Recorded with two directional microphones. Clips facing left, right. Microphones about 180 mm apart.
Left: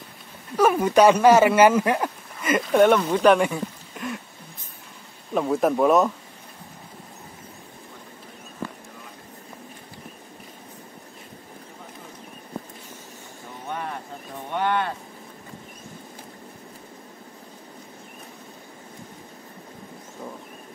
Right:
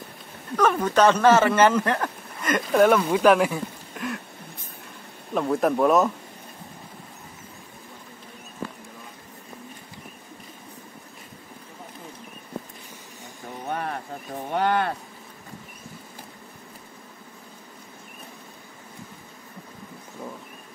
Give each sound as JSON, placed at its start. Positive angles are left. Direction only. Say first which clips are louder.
{"t": 0.6, "sound": "speech", "louder": "left 3 dB", "side_deg": 10}
{"t": 5.3, "sound": "speech", "louder": "left 1 dB", "side_deg": 0}
{"t": 13.7, "sound": "a sound", "louder": "right 2 dB", "side_deg": -40}